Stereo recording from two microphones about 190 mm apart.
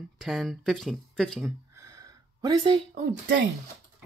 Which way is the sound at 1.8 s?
15° right (ahead or behind).